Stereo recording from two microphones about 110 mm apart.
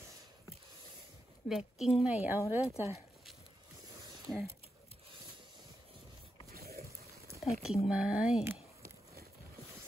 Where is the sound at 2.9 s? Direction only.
Centre (ahead or behind).